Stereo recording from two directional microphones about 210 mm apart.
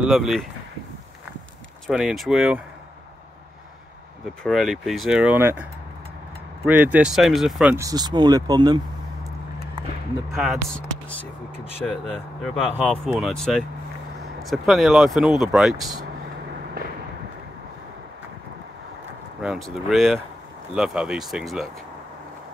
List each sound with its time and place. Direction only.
0.0 s speech: centre (ahead or behind)
1.9 s speech: 5° right (ahead or behind)
4.4 s speech: centre (ahead or behind)
7.7 s speech: 15° right (ahead or behind)
10.3 s speech: centre (ahead or behind)
19.4 s speech: centre (ahead or behind)